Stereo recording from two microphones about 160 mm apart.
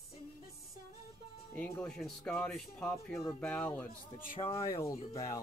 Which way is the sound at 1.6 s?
5° left (ahead or behind).